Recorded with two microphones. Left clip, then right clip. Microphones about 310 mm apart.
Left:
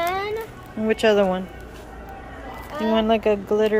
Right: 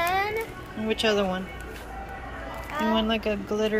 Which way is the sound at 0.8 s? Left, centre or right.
Centre.